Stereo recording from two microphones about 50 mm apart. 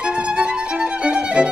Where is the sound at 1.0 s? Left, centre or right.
Right.